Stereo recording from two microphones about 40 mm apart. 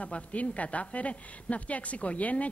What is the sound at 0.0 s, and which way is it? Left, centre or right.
A woman's voice, left.